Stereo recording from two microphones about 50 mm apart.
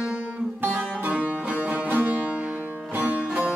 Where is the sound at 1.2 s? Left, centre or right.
Right.